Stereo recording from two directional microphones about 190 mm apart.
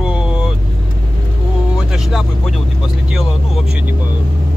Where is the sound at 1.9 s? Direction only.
Centre (ahead or behind).